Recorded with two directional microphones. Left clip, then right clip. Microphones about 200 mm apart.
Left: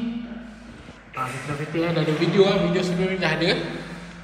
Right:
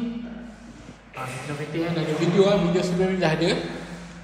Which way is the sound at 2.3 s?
20° right (ahead or behind).